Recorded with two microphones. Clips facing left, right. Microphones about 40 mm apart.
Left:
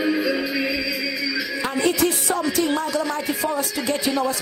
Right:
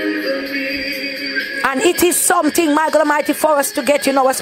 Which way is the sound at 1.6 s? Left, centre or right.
Right.